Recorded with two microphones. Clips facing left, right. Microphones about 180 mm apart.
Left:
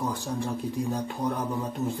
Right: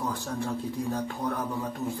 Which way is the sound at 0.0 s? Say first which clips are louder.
Left 1 dB; 15° left (ahead or behind).